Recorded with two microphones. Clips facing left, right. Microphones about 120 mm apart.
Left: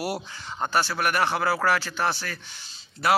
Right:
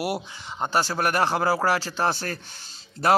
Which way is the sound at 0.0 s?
20° right (ahead or behind).